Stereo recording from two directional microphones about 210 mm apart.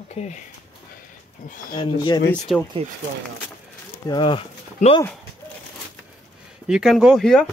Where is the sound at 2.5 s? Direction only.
Centre (ahead or behind).